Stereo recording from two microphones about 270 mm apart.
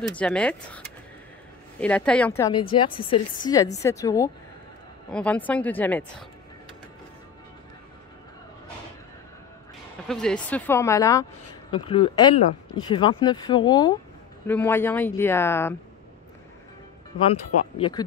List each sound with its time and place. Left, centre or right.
0.1 s speech: centre
10.0 s speech: centre
17.2 s speech: left